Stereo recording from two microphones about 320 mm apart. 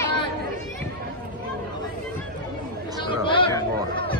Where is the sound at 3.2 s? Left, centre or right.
Centre.